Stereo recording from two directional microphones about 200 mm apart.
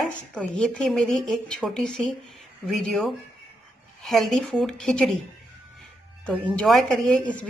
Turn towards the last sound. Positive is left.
turn(degrees=0)  # may be behind; listen again after turning